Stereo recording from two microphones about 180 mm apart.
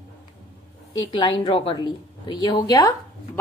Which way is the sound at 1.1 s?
30° left (ahead or behind).